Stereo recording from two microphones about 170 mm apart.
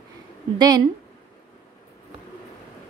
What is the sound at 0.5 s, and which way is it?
Speech, 25° right (ahead or behind).